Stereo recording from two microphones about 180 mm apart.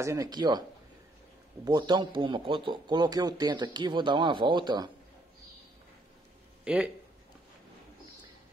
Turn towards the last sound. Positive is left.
turn(degrees=-5)  # may be behind; listen again after turning